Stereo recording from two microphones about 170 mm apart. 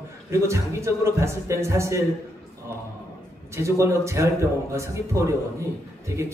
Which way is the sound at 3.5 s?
15° right (ahead or behind).